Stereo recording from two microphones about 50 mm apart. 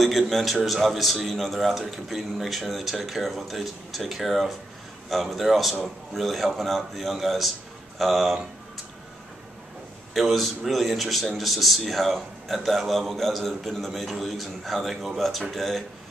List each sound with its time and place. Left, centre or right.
0.0 s a man's voice: centre
10.1 s a man's voice: centre